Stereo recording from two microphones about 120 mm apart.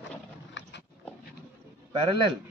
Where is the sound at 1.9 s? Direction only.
50° right (ahead or behind).